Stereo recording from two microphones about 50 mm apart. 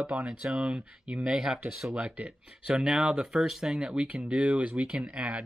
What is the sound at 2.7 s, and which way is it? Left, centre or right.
Speech, centre.